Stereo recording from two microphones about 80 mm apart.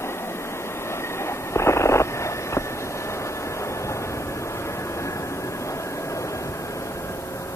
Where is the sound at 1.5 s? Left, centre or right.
Left.